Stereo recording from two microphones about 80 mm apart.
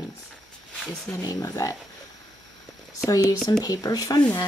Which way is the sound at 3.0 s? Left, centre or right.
Left.